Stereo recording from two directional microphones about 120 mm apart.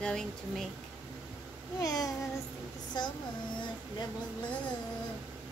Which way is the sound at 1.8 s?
30° left (ahead or behind).